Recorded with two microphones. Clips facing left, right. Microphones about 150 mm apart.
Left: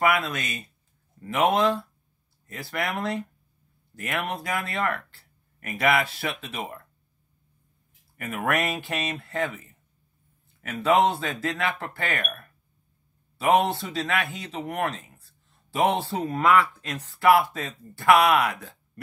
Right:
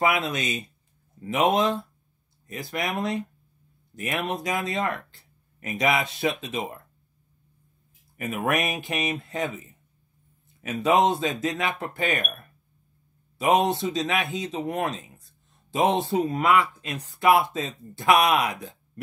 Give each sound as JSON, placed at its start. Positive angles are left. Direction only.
{"t": 0.0, "sound": "speech", "side_deg": -20}
{"t": 8.2, "sound": "speech", "side_deg": -20}